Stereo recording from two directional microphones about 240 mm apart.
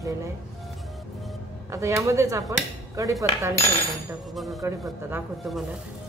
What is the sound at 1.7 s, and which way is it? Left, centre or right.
Hammer, centre.